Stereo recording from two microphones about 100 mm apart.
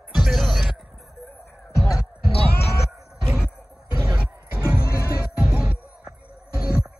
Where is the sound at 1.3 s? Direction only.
25° left (ahead or behind).